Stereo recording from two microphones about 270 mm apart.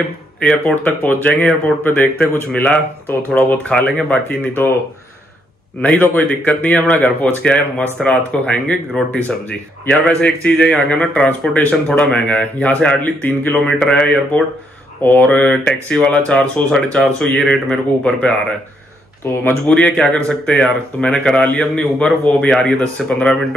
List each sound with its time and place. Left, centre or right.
0.4 s speech: centre
5.8 s speech: centre